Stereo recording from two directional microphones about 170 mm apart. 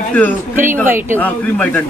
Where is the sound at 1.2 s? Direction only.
10° left (ahead or behind).